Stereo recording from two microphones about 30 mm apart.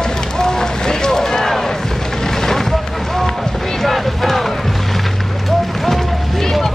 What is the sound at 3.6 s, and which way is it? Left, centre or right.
Music, centre.